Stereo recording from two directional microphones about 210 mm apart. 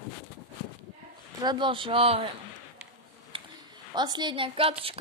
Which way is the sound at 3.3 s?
20° right (ahead or behind).